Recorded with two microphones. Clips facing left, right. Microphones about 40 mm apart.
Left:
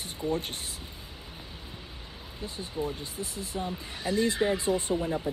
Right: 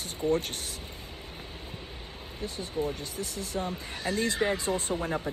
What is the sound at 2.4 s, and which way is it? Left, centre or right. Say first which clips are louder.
Speech: right 2 dB; right.